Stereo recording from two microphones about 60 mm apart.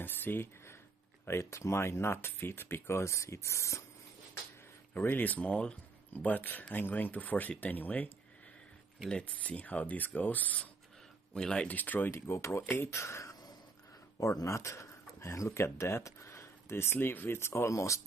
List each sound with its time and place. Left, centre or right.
0.0 s speech: left
1.2 s speech: left
4.9 s speech: left
5.5 s speech: centre
9.1 s speech: left
11.3 s speech: centre
11.6 s speech: left
12.3 s speech: left